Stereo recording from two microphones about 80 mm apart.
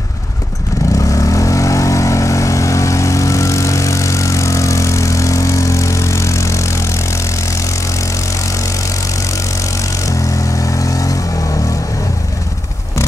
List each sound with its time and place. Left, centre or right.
0.9 s vehicle: left
10.0 s vehicle: left